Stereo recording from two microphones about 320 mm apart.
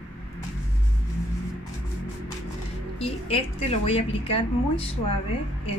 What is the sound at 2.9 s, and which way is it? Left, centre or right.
A woman's voice, centre.